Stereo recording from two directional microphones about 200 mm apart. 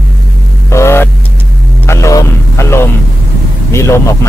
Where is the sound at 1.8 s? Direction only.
15° left (ahead or behind).